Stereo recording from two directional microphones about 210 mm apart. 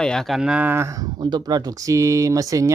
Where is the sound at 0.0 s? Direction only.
Centre (ahead or behind).